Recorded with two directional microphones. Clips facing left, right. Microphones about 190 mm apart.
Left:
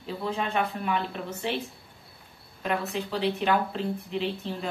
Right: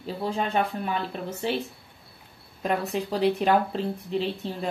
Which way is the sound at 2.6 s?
40° right (ahead or behind).